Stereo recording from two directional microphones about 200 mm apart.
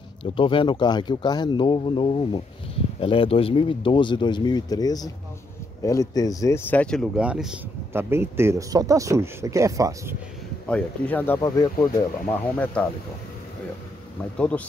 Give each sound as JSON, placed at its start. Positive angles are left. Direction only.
{"t": 0.2, "sound": "speech", "side_deg": 25}
{"t": 10.7, "sound": "speech", "side_deg": 10}
{"t": 11.3, "sound": "speech", "side_deg": 20}
{"t": 12.8, "sound": "speech", "side_deg": 5}